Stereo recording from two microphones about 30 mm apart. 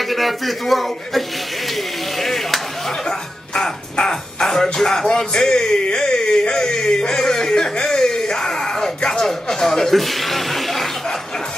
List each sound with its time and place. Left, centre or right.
0.0 s a man's voice: centre
1.7 s a sound: centre
3.1 s speech: centre
4.4 s music: centre
4.7 s speech: centre
7.8 s a sound: centre